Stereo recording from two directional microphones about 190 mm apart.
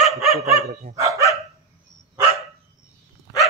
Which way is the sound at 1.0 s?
15° right (ahead or behind).